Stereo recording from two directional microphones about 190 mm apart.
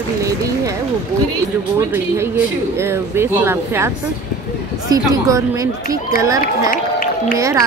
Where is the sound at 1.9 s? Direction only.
10° right (ahead or behind).